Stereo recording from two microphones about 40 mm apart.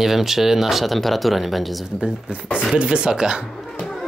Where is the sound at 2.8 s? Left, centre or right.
Right.